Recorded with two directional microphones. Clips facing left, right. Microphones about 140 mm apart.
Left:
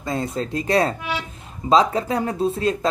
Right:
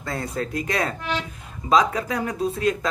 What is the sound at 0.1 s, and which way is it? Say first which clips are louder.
Speech: left 3 dB; 25° left (ahead or behind).